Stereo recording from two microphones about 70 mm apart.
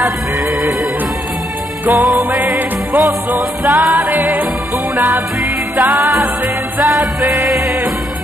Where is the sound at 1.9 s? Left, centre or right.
Centre.